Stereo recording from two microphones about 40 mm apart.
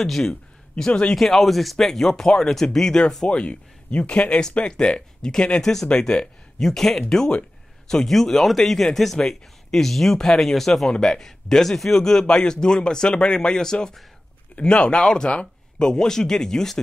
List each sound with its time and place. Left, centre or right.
0.0 s a man's voice: centre
1.1 s speech: centre
3.3 s speech: left